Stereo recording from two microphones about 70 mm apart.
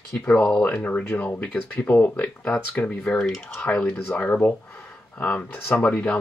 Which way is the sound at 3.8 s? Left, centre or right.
Left.